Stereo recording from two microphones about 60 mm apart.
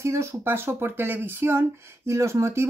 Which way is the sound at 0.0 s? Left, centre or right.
Right.